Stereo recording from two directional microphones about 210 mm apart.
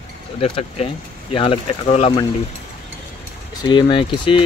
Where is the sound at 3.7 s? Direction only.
25° left (ahead or behind).